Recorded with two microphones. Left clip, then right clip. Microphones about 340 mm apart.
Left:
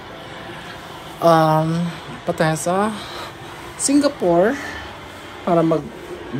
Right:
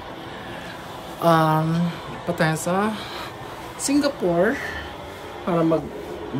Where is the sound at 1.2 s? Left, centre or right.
Centre.